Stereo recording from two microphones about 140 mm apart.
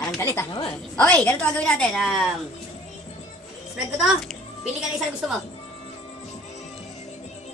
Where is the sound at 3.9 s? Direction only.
5° right (ahead or behind).